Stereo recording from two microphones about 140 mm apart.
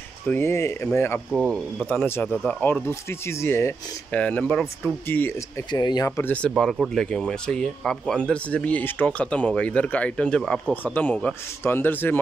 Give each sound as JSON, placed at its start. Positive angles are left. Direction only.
{"t": 0.3, "sound": "speech", "side_deg": 20}
{"t": 5.7, "sound": "speech", "side_deg": 30}
{"t": 6.1, "sound": "speech", "side_deg": 10}
{"t": 6.5, "sound": "speech", "side_deg": 0}